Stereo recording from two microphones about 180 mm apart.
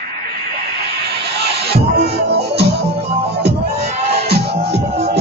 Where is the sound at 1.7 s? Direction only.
65° right (ahead or behind).